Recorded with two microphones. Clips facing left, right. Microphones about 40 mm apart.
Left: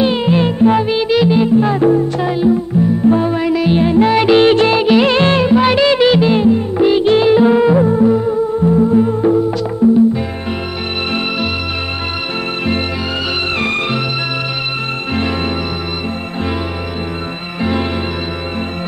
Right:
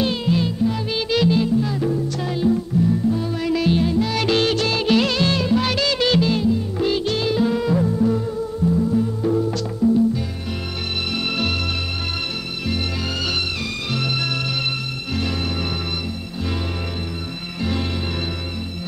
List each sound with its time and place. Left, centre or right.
0.0 s music: left
0.8 s music: left
1.6 s music: left
3.4 s music: left
3.8 s music: left
5.1 s music: left
15.1 s music: left
17.6 s music: left